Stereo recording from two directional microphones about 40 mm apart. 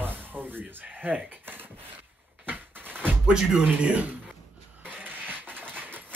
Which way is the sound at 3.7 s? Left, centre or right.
Right.